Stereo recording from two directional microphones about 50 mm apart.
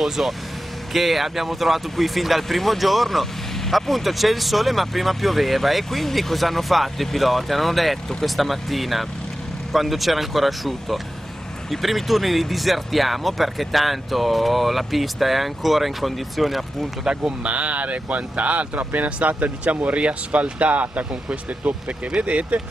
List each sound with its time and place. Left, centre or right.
0.2 s speech: centre
0.9 s speech: centre
17.0 s speech: right